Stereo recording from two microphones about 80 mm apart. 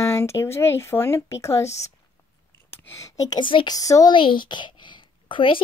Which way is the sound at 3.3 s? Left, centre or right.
Left.